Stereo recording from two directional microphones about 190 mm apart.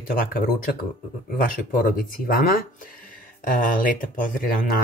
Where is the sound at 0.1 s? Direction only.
50° left (ahead or behind).